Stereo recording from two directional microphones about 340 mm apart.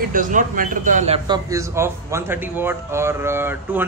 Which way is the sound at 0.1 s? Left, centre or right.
Right.